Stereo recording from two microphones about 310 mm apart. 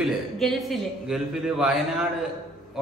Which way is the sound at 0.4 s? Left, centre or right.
Centre.